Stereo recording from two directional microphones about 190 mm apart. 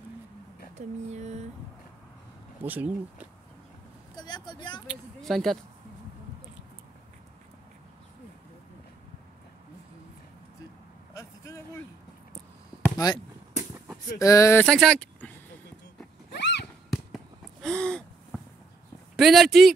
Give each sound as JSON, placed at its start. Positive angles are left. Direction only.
{"t": 0.7, "sound": "speech", "side_deg": -35}
{"t": 2.6, "sound": "speech", "side_deg": -10}
{"t": 4.2, "sound": "vehicle", "side_deg": 25}
{"t": 4.8, "sound": "speech", "side_deg": 0}
{"t": 11.1, "sound": "vehicle", "side_deg": 15}
{"t": 12.9, "sound": "speech", "side_deg": 20}
{"t": 16.3, "sound": "fireworks", "side_deg": 60}
{"t": 16.9, "sound": "fireworks", "side_deg": 0}
{"t": 19.1, "sound": "speech", "side_deg": 0}